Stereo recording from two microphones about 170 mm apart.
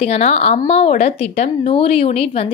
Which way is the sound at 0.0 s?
40° left (ahead or behind).